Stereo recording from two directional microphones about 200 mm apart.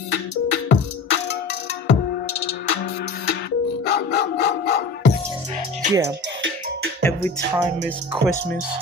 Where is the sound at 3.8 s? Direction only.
50° left (ahead or behind).